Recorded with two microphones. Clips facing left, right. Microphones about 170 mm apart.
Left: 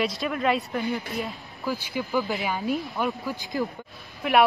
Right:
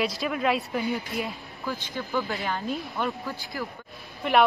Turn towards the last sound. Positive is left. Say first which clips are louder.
# left 1 dB
turn(degrees=0)  # may be behind; listen again after turning